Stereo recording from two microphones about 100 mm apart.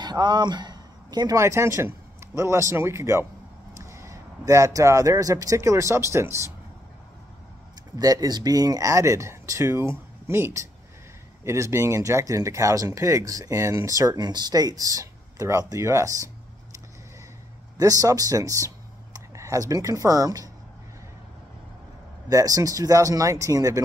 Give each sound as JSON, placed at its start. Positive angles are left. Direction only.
{"t": 0.0, "sound": "a man's voice", "side_deg": -45}
{"t": 1.4, "sound": "a man's voice", "side_deg": -30}
{"t": 7.9, "sound": "speech", "side_deg": -35}
{"t": 17.7, "sound": "speech", "side_deg": -35}
{"t": 22.3, "sound": "speech", "side_deg": -35}